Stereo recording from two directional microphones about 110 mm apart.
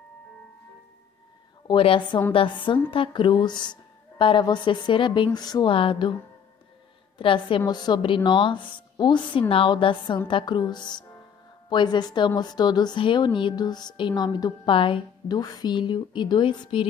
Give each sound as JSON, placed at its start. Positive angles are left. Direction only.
{"t": 1.7, "sound": "a woman's voice", "side_deg": 50}
{"t": 5.7, "sound": "a woman's voice", "side_deg": 55}
{"t": 7.2, "sound": "a woman's voice", "side_deg": 50}
{"t": 15.2, "sound": "a woman's voice", "side_deg": 40}